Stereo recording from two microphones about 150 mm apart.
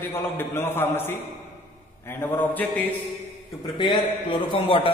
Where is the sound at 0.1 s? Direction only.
15° left (ahead or behind).